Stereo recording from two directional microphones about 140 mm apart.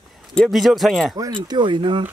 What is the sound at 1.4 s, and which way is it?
Speech, 35° right (ahead or behind).